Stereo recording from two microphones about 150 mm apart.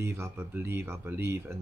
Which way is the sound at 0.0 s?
15° right (ahead or behind).